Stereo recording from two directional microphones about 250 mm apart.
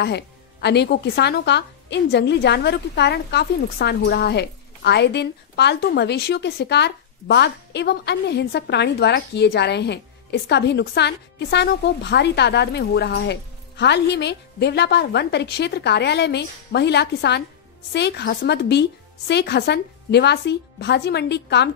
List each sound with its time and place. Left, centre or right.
0.0 s speech: left